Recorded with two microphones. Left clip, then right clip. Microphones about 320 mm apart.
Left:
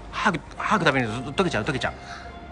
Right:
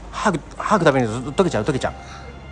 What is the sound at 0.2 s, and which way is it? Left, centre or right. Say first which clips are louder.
Speech: right 3 dB; centre.